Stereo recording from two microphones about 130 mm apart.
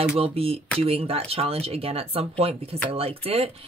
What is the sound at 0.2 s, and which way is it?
Speech, 50° right (ahead or behind).